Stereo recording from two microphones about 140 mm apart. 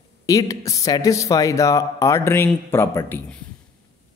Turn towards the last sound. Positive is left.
turn(degrees=15)  # may be behind; listen again after turning